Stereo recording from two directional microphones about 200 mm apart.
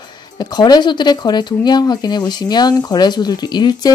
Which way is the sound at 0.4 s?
20° left (ahead or behind).